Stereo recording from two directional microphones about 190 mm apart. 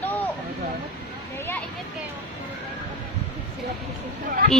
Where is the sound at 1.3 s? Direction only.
10° left (ahead or behind).